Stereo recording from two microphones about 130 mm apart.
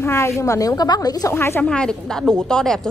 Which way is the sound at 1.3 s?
20° left (ahead or behind).